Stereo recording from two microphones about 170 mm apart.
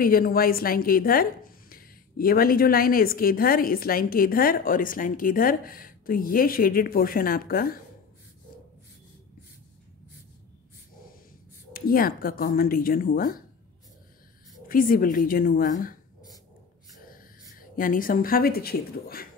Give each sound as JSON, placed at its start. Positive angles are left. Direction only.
{"t": 0.0, "sound": "a woman's voice", "side_deg": 60}
{"t": 11.7, "sound": "a woman's voice", "side_deg": 60}
{"t": 14.7, "sound": "a woman's voice", "side_deg": 55}
{"t": 17.0, "sound": "speech", "side_deg": 55}